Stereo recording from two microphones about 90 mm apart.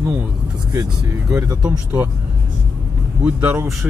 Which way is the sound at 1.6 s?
20° right (ahead or behind).